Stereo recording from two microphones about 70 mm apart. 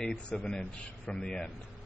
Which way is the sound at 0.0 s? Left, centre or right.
Centre.